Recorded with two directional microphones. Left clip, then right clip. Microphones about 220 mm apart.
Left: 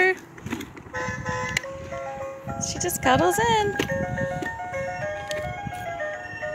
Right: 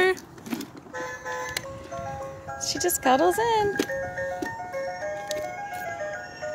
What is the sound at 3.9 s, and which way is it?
Music, 30° right (ahead or behind).